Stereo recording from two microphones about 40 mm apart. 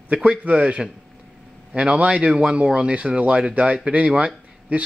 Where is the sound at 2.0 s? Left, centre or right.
Right.